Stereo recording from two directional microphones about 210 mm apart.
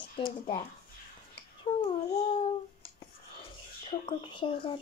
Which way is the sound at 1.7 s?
25° left (ahead or behind).